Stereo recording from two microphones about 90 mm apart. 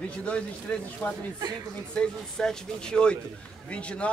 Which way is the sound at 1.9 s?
10° left (ahead or behind).